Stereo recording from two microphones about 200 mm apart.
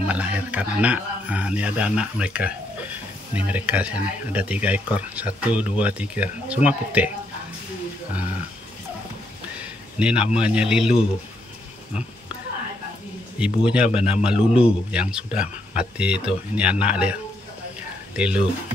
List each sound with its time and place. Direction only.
0.0 s speech: 5° right (ahead or behind)
9.6 s a sound: 5° right (ahead or behind)
10.4 s speech: 5° right (ahead or behind)
13.4 s speech: 5° right (ahead or behind)